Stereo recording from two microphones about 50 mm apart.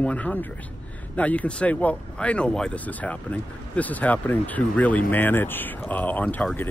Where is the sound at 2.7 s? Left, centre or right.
Left.